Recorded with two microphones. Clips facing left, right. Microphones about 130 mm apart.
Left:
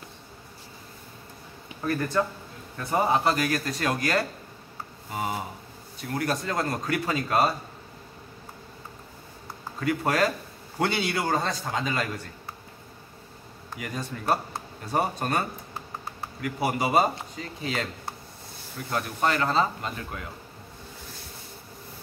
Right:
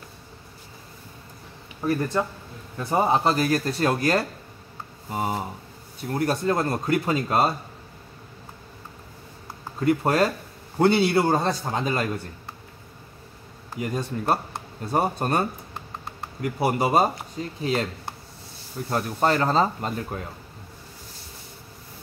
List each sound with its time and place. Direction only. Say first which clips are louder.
1.8 s speech: right 2 dB; 20° right (ahead or behind)
9.8 s speech: right 4 dB; 30° right (ahead or behind)
13.7 s speech: right 6 dB; 30° right (ahead or behind)
18.9 s speech: right 4 dB; 35° right (ahead or behind)